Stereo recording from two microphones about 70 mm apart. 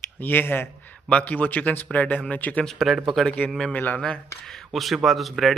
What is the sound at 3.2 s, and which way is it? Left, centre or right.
Speech, centre.